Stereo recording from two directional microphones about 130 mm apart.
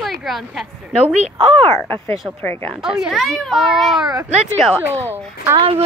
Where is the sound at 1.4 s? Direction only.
40° right (ahead or behind).